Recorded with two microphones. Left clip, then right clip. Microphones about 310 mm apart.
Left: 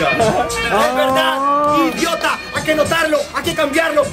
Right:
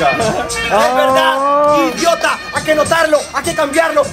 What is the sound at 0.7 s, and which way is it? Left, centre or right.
Speech, centre.